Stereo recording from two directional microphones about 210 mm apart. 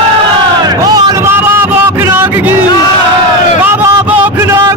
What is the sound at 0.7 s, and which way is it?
Vehicle, 20° right (ahead or behind).